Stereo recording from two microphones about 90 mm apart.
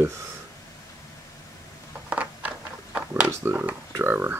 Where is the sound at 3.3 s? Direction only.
25° right (ahead or behind).